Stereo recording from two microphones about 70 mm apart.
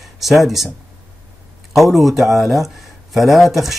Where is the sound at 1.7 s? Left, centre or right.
Centre.